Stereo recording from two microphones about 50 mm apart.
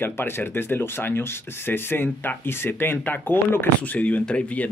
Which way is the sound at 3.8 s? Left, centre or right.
Left.